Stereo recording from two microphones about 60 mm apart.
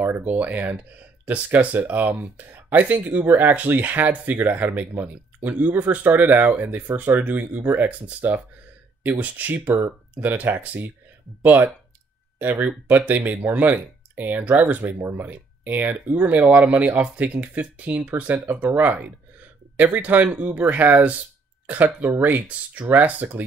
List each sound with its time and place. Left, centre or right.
0.0 s speech: right